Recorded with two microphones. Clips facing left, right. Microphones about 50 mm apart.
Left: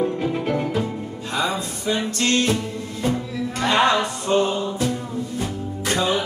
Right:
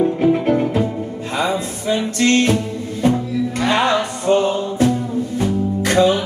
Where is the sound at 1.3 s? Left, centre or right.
Right.